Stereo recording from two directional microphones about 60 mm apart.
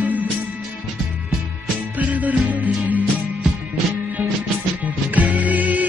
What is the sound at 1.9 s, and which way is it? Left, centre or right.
Music, right.